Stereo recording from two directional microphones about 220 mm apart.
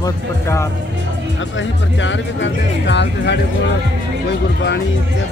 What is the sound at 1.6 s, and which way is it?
Speech, 55° left (ahead or behind).